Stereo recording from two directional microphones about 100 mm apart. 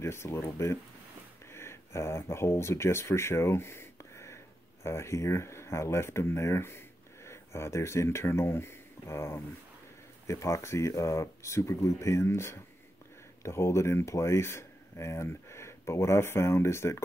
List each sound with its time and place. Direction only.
0.0 s speech: 25° left (ahead or behind)